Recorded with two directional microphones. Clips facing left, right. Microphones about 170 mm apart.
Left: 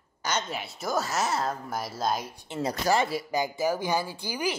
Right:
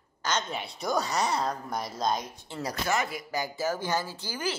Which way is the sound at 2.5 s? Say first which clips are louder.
Left 4 dB; 25° left (ahead or behind).